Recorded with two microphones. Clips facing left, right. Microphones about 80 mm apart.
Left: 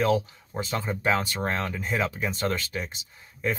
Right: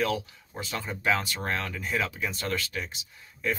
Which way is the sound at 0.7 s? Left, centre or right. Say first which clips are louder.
Left 2 dB; left.